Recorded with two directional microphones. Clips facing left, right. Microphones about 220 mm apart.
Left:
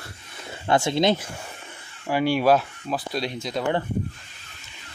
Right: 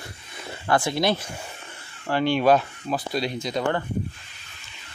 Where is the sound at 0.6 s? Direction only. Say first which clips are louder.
Left 2 dB; 25° left (ahead or behind).